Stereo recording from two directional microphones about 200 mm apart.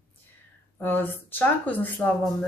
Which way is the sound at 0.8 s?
10° left (ahead or behind).